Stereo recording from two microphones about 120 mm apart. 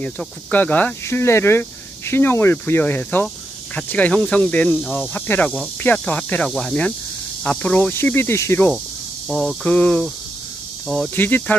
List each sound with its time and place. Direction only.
0.0 s speech: 15° left (ahead or behind)
9.3 s speech: centre (ahead or behind)
9.7 s speech: 10° left (ahead or behind)
11.1 s speech: 15° left (ahead or behind)